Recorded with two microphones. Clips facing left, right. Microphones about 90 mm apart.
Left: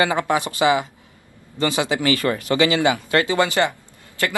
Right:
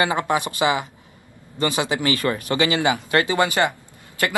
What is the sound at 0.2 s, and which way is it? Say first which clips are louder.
Speech: left 2 dB; 25° right (ahead or behind).